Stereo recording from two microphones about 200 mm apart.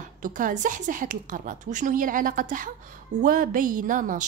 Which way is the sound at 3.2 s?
45° right (ahead or behind).